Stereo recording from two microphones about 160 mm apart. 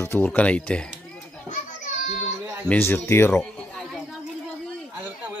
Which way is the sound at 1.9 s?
50° left (ahead or behind).